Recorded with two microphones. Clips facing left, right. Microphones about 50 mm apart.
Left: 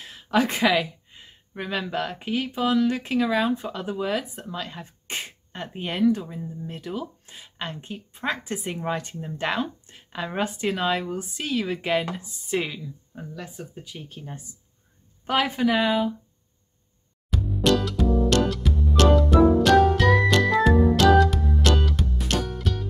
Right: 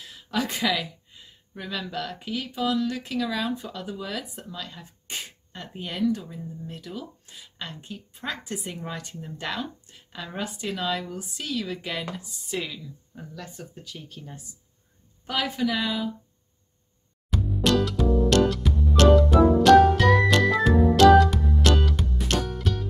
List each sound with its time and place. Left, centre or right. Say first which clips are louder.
0.0 s speech: left 6 dB; left
13.2 s speech: left 3 dB; centre; by 16.1 s left
17.3 s music: left 1 dB; centre